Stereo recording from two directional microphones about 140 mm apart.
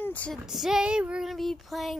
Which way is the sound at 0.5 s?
5° right (ahead or behind).